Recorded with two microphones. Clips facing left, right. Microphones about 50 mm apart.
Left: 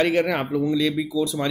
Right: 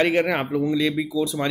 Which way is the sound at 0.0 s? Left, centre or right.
Right.